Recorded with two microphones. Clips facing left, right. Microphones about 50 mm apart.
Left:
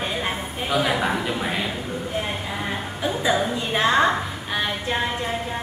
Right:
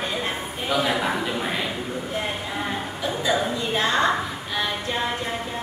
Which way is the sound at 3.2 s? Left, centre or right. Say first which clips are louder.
Left 1 dB; centre.